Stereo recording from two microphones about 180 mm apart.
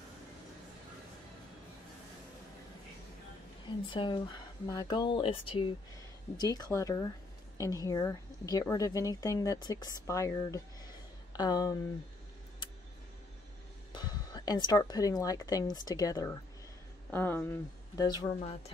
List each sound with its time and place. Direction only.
3.6 s speech: 25° left (ahead or behind)
13.9 s speech: 20° left (ahead or behind)
18.0 s a woman's voice: 25° left (ahead or behind)